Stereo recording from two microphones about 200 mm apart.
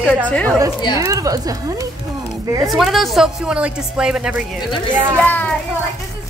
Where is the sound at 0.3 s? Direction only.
5° left (ahead or behind).